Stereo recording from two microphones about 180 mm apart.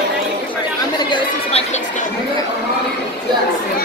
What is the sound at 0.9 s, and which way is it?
Chatter, 25° left (ahead or behind).